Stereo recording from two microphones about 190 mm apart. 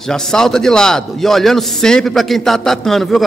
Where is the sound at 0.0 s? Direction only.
5° left (ahead or behind).